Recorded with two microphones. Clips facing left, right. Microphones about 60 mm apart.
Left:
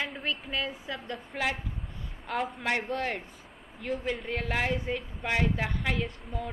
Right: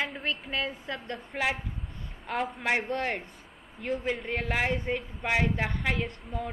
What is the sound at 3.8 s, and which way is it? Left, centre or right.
Speech, centre.